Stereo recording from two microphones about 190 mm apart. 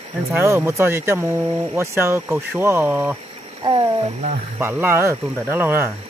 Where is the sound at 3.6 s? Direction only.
25° right (ahead or behind).